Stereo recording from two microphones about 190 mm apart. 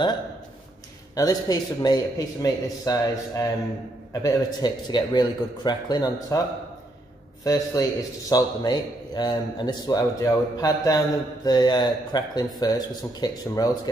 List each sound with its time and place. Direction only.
1.1 s a man's voice: 20° left (ahead or behind)
7.4 s a man's voice: 20° left (ahead or behind)